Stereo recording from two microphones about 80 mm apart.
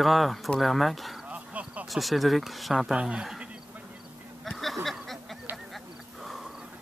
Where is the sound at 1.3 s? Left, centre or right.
Centre.